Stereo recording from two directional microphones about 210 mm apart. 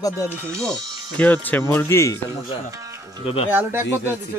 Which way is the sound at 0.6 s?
5° left (ahead or behind).